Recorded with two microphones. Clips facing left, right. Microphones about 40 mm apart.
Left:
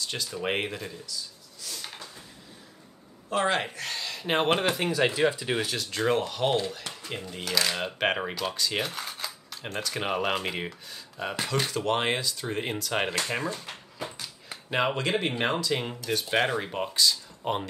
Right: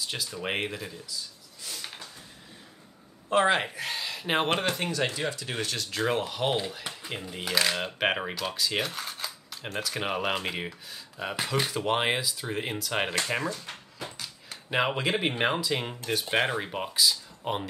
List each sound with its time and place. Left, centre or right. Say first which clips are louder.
0.0 s speech: left 2 dB; centre
1.6 s a sound: even; centre
3.3 s speech: right 3 dB; right
3.5 s speech: even; centre
5.7 s speech: right 1 dB; centre
7.7 s speech: even; centre
13.9 s a sound: left 4 dB; centre
14.7 s speech: even; centre